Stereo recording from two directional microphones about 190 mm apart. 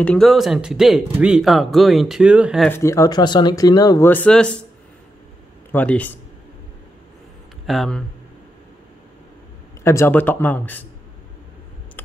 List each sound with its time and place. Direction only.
0.0 s speech: 5° left (ahead or behind)
2.7 s speech: 15° left (ahead or behind)
5.7 s speech: 10° left (ahead or behind)
7.6 s speech: centre (ahead or behind)
9.8 s speech: 10° left (ahead or behind)